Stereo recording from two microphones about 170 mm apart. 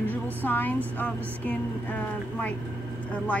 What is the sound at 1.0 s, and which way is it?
Speech, 10° left (ahead or behind).